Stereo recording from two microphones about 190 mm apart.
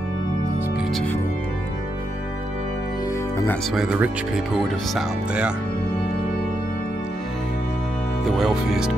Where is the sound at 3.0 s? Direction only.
15° left (ahead or behind).